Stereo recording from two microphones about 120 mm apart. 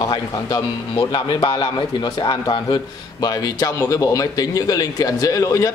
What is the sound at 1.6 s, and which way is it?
A man's voice, 35° left (ahead or behind).